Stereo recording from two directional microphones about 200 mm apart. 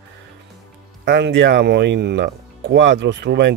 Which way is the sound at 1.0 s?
60° right (ahead or behind).